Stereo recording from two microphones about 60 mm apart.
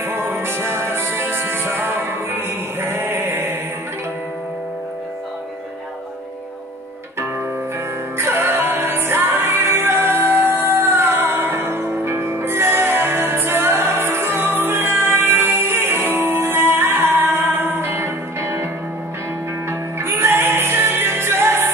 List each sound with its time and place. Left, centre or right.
0.0 s music: right
8.2 s music: right
19.7 s music: right